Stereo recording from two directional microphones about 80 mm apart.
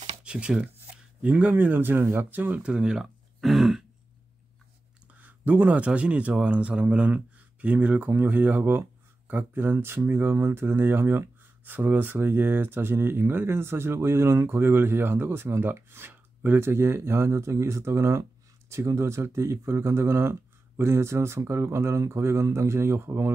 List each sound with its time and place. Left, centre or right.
0.2 s speech: centre
5.2 s speech: right